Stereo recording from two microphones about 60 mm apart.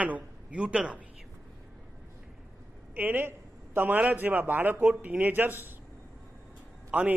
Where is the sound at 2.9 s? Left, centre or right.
Right.